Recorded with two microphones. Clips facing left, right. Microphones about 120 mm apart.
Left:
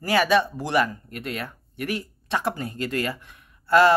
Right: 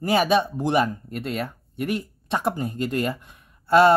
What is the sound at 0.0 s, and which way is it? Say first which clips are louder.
Speech: right 1 dB; 20° right (ahead or behind).